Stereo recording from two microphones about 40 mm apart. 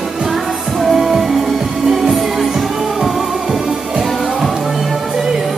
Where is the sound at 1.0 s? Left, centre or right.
Centre.